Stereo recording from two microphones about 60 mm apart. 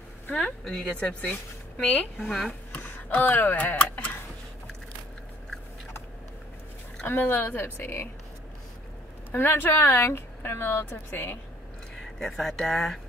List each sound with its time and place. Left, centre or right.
0.4 s speech: centre
0.9 s speech: centre
2.1 s speech: centre
2.7 s speech: left
7.1 s speech: left
9.3 s a woman's voice: left
11.9 s speech: centre